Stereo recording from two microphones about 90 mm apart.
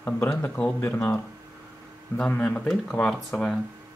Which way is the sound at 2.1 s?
15° left (ahead or behind).